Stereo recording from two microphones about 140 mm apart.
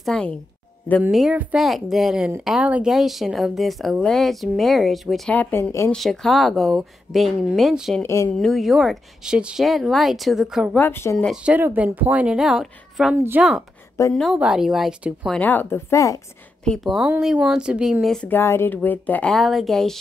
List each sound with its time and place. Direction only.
0.0 s a woman's voice: 5° left (ahead or behind)
5.3 s speech: 15° left (ahead or behind)
5.9 s speech: centre (ahead or behind)
8.0 s speech: 20° left (ahead or behind)
8.3 s speech: 5° left (ahead or behind)
10.8 s speech: 15° left (ahead or behind)
11.4 s a woman's voice: 10° right (ahead or behind)
13.1 s a woman's voice: 15° right (ahead or behind)
14.1 s speech: centre (ahead or behind)
15.3 s speech: 10° left (ahead or behind)
16.6 s speech: centre (ahead or behind)
18.4 s speech: 20° left (ahead or behind)
19.3 s speech: centre (ahead or behind)